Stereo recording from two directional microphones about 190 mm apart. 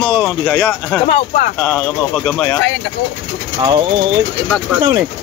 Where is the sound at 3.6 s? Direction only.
25° right (ahead or behind).